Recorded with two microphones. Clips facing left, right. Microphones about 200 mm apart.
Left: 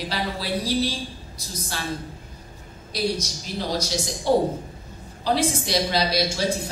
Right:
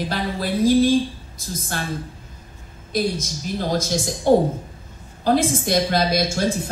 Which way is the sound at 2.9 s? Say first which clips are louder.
Right 3 dB; 50° right (ahead or behind).